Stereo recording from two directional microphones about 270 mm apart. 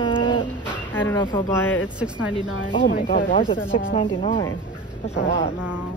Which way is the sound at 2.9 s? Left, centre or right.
Left.